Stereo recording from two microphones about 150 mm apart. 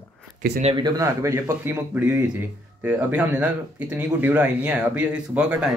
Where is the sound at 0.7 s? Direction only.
25° right (ahead or behind).